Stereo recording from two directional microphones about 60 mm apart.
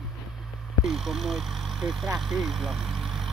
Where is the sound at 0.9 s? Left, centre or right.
Centre.